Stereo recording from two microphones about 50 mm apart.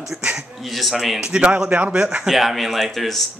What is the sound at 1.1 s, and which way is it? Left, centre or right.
Speech, centre.